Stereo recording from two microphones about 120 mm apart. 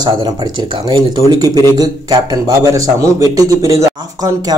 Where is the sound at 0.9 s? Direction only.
35° right (ahead or behind).